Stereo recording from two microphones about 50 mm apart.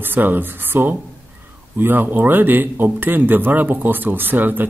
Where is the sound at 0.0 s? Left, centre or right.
Right.